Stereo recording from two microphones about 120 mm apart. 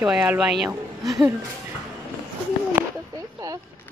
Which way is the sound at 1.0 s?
30° right (ahead or behind).